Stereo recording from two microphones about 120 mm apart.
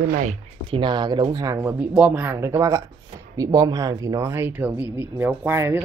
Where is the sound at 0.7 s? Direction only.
40° right (ahead or behind); by 1.8 s 25° right (ahead or behind).